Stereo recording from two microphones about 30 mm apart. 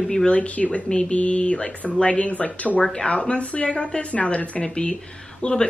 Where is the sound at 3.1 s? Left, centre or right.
Left.